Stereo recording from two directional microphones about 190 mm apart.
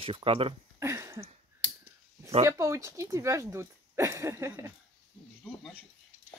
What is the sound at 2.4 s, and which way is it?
Speech, 15° right (ahead or behind).